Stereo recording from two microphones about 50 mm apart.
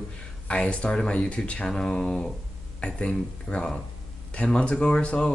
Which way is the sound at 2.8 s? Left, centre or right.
Left.